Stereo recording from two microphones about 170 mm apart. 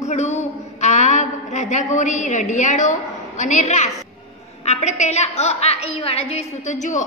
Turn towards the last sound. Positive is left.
turn(degrees=45)  # may be behind; listen again after turning